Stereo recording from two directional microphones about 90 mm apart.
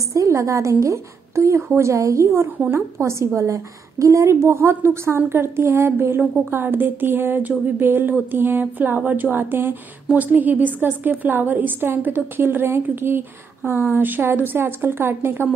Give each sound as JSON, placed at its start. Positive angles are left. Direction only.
{"t": 0.1, "sound": "a woman's voice", "side_deg": -35}